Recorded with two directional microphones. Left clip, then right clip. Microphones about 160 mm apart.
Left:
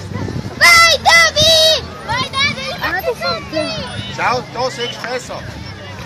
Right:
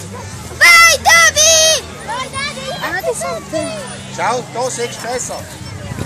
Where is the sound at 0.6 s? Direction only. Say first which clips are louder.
Right 1 dB; 40° left (ahead or behind).